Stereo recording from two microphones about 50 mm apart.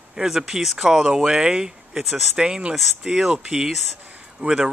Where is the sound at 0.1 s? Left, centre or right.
Centre.